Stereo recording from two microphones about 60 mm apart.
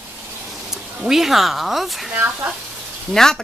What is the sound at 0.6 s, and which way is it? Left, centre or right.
Speech, centre.